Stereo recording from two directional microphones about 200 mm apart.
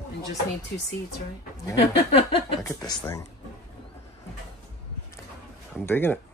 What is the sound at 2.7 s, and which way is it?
Speech, 20° left (ahead or behind).